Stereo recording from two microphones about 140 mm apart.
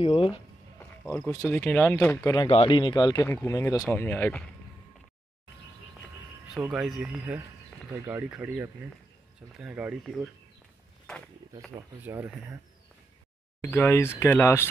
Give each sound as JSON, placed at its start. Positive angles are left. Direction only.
{"t": 0.0, "sound": "speech", "side_deg": 35}
{"t": 0.7, "sound": "a sound", "side_deg": 15}
{"t": 1.5, "sound": "speech", "side_deg": 10}
{"t": 2.5, "sound": "speech", "side_deg": 40}
{"t": 3.4, "sound": "speech", "side_deg": 15}
{"t": 6.5, "sound": "speech", "side_deg": -5}
{"t": 12.0, "sound": "speech", "side_deg": -15}
{"t": 13.6, "sound": "speech", "side_deg": 15}